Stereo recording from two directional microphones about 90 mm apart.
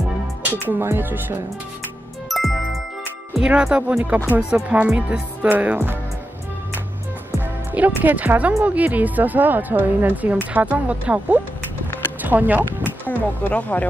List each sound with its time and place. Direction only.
0.5 s speech: 20° right (ahead or behind)
2.2 s music: centre (ahead or behind)
3.3 s music: 10° right (ahead or behind)
7.7 s music: 20° right (ahead or behind)
8.6 s speech: 15° right (ahead or behind)
10.5 s music: 15° right (ahead or behind)
12.2 s a sound: 20° right (ahead or behind)
13.0 s speech: 20° left (ahead or behind)